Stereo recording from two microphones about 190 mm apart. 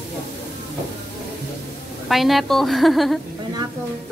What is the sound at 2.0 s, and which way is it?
A woman's voice, centre (ahead or behind).